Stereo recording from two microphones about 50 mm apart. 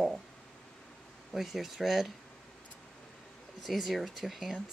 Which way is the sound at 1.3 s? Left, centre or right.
Centre.